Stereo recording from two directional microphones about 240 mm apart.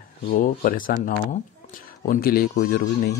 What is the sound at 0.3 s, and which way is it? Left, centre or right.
Speech, left.